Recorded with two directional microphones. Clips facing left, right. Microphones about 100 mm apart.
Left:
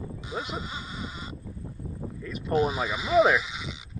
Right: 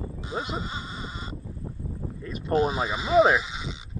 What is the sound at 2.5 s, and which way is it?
Speech, 5° left (ahead or behind).